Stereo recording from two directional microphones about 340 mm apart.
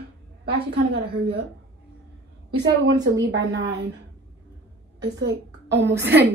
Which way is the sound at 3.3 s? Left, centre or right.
Right.